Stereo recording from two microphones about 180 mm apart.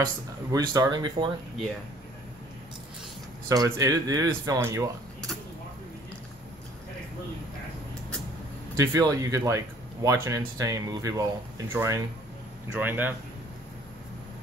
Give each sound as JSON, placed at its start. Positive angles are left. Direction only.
{"t": 0.0, "sound": "speech", "side_deg": -20}
{"t": 3.4, "sound": "speech", "side_deg": -20}
{"t": 8.7, "sound": "speech", "side_deg": -20}